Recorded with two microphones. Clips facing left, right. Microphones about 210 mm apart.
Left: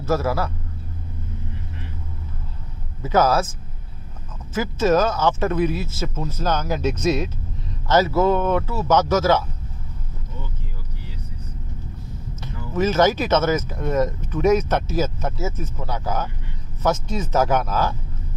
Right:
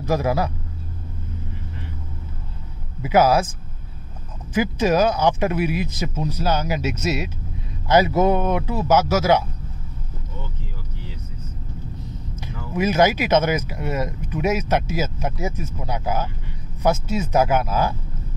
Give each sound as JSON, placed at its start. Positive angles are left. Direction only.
{"t": 0.0, "sound": "a man's voice", "side_deg": -15}
{"t": 3.0, "sound": "speech", "side_deg": -10}
{"t": 4.6, "sound": "speech", "side_deg": -15}
{"t": 12.4, "sound": "speech", "side_deg": -10}